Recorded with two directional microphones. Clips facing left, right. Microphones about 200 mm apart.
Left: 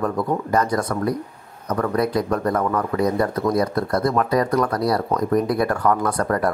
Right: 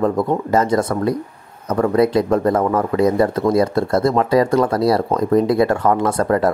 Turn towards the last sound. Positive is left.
turn(degrees=-25)  # may be behind; listen again after turning